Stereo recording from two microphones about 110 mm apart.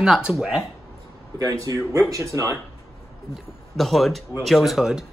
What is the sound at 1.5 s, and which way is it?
Speech, 35° right (ahead or behind).